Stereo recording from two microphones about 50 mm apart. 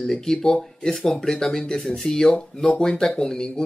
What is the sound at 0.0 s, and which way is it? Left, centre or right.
Speech, centre.